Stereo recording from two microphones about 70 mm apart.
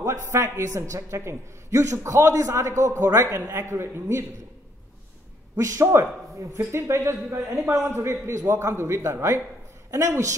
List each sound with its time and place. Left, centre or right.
0.0 s a man's voice: right
5.6 s a man's voice: right